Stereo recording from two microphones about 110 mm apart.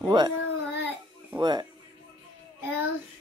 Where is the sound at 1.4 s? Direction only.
40° right (ahead or behind).